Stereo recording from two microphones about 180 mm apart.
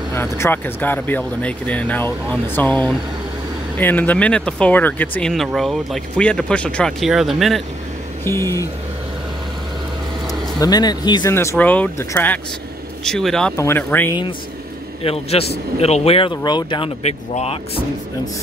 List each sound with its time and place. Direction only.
0.1 s speech: 10° left (ahead or behind)
8.2 s speech: 15° left (ahead or behind)
10.6 s speech: 20° left (ahead or behind)
11.3 s speech: 10° left (ahead or behind)
13.6 s speech: 15° left (ahead or behind)
15.0 s speech: 35° left (ahead or behind)